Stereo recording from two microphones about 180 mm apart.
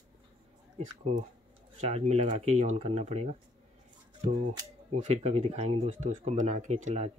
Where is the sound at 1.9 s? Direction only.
35° right (ahead or behind).